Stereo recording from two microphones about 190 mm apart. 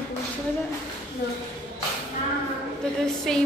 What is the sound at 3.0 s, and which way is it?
Speech, 5° left (ahead or behind).